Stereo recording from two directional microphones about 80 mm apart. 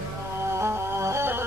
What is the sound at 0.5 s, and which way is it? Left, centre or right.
Music, right.